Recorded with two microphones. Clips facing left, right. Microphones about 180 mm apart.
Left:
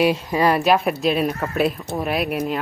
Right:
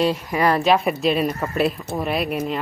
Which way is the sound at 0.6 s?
Centre (ahead or behind).